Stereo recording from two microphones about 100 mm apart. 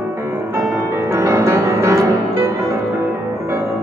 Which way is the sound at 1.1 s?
30° right (ahead or behind).